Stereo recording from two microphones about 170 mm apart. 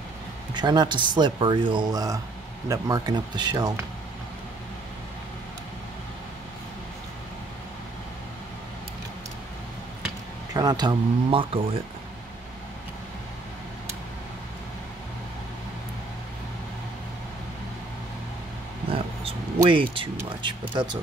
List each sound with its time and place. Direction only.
0.6 s speech: 25° right (ahead or behind)
10.5 s speech: 25° right (ahead or behind)
18.9 s a sound: 35° right (ahead or behind)
19.9 s speech: 30° right (ahead or behind)